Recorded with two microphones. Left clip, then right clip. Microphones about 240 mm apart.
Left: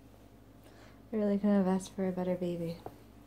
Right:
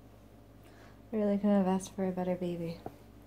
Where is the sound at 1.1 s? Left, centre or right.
Centre.